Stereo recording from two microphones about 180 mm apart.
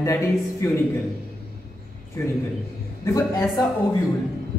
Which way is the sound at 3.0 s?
15° left (ahead or behind).